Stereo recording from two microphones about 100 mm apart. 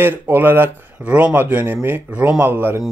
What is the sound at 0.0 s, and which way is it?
Speech, 20° right (ahead or behind).